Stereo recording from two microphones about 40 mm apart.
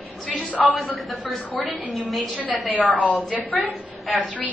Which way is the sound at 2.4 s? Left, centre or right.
Right.